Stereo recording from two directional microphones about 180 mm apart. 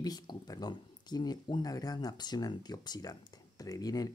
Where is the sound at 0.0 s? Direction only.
20° left (ahead or behind).